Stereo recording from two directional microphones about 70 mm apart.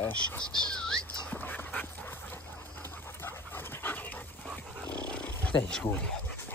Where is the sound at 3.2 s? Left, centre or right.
Left.